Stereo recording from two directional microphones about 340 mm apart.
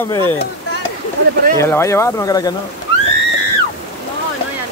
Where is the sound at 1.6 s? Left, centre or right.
Centre.